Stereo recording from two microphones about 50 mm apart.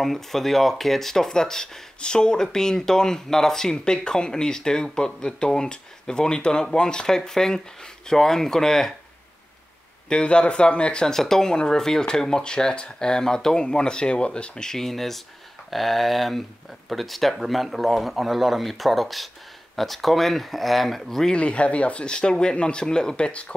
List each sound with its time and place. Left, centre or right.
0.0 s speech: centre
10.0 s speech: centre
21.3 s speech: left